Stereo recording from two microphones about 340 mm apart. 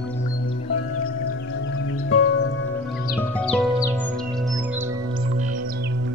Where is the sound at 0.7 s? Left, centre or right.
Left.